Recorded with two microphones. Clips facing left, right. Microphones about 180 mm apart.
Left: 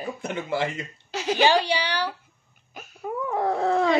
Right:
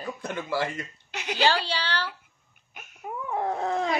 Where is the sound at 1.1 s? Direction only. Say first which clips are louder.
Left 8 dB; 35° left (ahead or behind).